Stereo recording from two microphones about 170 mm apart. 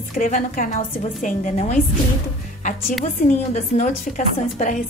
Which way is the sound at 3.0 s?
45° left (ahead or behind).